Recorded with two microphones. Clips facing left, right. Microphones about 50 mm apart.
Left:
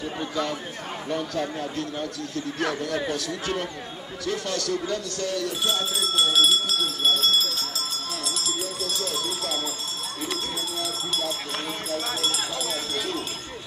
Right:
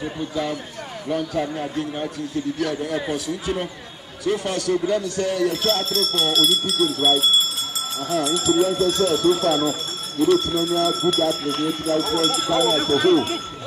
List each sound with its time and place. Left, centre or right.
1.0 s speech: centre; by 5.5 s right
5.9 s speech: centre; by 13.4 s right